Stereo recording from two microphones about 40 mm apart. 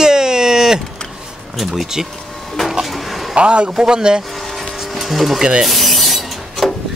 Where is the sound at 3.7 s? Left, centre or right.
Centre.